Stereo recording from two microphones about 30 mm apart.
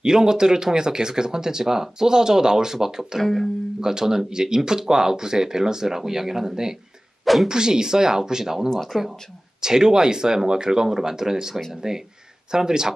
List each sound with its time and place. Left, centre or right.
0.0 s speech: right